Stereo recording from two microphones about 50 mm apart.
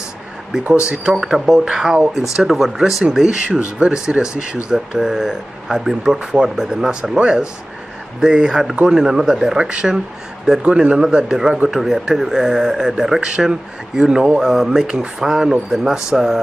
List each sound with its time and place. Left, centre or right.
0.8 s speech: centre
9.6 s speech: right